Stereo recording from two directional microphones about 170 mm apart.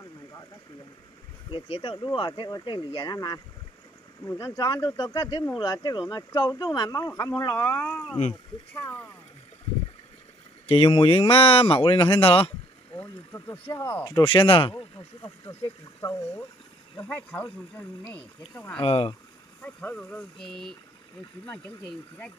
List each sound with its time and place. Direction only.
1.5 s speech: 30° left (ahead or behind)
4.2 s speech: 15° left (ahead or behind)
10.7 s speech: 30° left (ahead or behind)
12.9 s speech: 10° left (ahead or behind); by 14.9 s 30° left (ahead or behind)
16.0 s speech: 15° left (ahead or behind)
18.8 s speech: 35° left (ahead or behind)
19.6 s speech: 10° left (ahead or behind)